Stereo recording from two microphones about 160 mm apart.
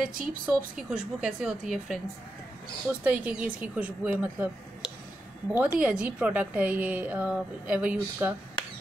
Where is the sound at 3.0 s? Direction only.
10° right (ahead or behind).